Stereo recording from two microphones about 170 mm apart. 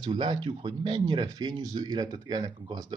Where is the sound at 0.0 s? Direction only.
30° right (ahead or behind).